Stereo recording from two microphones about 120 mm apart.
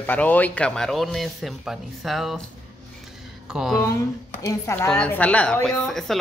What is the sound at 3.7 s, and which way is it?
A woman's voice, 25° left (ahead or behind).